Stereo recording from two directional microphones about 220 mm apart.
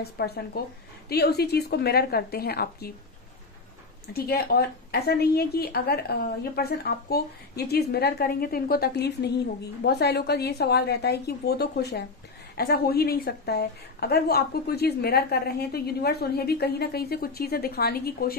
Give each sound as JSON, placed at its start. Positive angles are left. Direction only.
{"t": 0.0, "sound": "a woman's voice", "side_deg": 45}
{"t": 4.1, "sound": "a woman's voice", "side_deg": 45}